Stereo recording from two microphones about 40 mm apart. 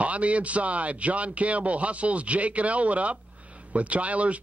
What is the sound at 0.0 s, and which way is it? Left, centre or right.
Speech, right.